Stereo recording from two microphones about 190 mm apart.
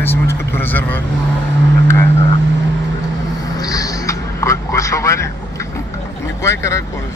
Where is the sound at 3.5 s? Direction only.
20° left (ahead or behind).